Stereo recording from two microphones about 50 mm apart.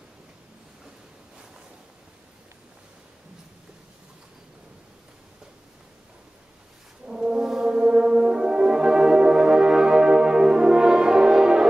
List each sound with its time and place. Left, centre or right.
7.1 s brass instrument: centre
7.7 s music: centre